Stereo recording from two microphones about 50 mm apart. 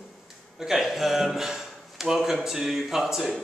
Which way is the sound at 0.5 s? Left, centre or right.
Centre.